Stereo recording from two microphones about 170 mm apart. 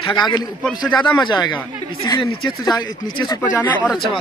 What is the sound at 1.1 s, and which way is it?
Speech, 25° left (ahead or behind).